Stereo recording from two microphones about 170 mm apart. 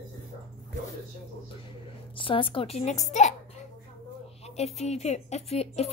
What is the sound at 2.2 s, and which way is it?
Speech, 30° left (ahead or behind).